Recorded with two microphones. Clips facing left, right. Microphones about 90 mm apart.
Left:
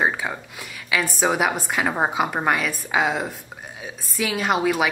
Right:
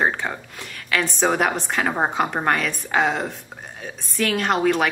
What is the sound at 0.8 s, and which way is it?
A woman's voice, 5° left (ahead or behind).